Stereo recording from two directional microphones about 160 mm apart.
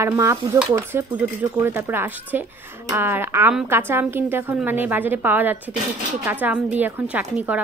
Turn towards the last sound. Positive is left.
turn(degrees=-10)  # may be behind; listen again after turning